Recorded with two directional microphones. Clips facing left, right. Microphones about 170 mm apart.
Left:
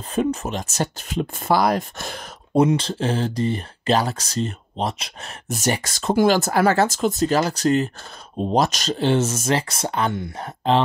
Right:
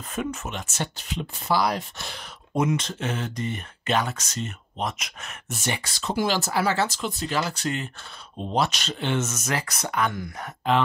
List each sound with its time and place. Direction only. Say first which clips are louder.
0.1 s speech: left 8 dB; 35° left (ahead or behind)
2.5 s speech: left 7 dB; 35° left (ahead or behind)